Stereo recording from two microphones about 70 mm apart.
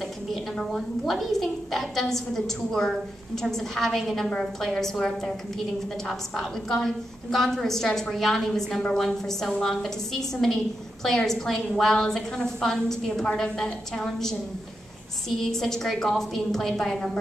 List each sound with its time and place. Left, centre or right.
0.3 s a woman's voice: centre